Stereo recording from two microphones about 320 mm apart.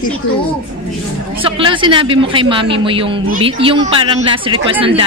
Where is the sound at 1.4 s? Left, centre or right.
Centre.